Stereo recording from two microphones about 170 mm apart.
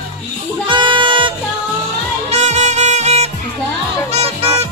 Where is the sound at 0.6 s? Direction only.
30° right (ahead or behind).